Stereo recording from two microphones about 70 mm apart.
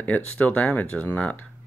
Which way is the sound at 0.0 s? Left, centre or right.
Left.